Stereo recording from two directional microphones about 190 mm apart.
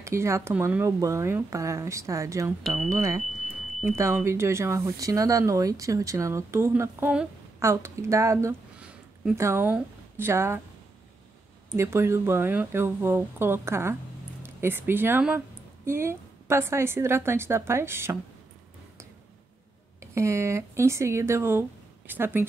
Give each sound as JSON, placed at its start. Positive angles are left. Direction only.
{"t": 0.0, "sound": "speech", "side_deg": -15}
{"t": 11.7, "sound": "speech", "side_deg": -15}
{"t": 20.0, "sound": "speech", "side_deg": -15}